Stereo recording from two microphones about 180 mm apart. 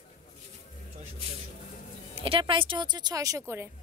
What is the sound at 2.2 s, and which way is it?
Speech, 30° right (ahead or behind).